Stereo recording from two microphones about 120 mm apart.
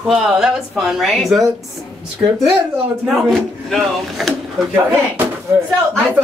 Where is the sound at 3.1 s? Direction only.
Centre (ahead or behind).